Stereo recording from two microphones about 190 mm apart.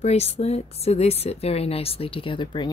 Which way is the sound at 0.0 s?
35° left (ahead or behind).